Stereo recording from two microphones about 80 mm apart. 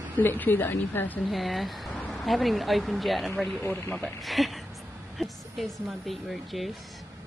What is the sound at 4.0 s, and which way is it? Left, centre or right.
A woman's voice, centre.